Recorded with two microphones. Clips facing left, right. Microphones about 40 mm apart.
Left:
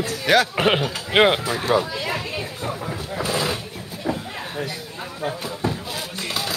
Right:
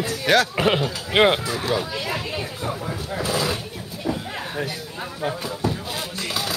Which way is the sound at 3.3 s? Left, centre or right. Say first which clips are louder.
Even; centre.